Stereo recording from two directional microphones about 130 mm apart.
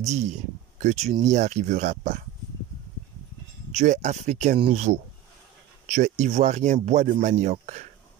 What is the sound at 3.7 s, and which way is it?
Speech, 65° right (ahead or behind).